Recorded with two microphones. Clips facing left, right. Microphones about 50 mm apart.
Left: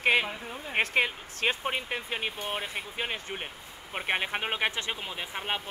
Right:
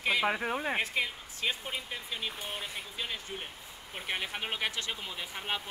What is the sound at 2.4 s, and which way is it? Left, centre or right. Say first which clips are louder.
Speech: left 5 dB; left.